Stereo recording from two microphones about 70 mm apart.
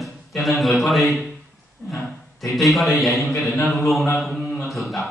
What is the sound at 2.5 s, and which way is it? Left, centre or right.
A man's voice, centre.